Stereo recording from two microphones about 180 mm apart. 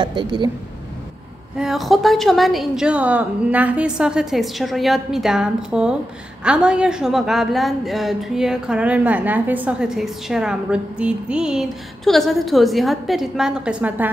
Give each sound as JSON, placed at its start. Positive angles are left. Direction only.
{"t": 0.0, "sound": "speech", "side_deg": -25}
{"t": 1.6, "sound": "a woman's voice", "side_deg": 0}